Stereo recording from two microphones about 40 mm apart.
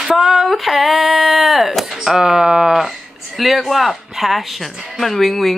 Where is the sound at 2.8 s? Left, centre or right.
Centre.